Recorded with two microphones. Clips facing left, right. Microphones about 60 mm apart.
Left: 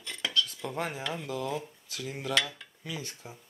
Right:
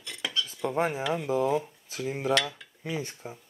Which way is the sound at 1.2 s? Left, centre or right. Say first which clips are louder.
Right 8 dB; centre.